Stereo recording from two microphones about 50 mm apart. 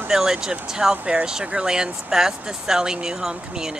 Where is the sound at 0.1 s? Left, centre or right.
Centre.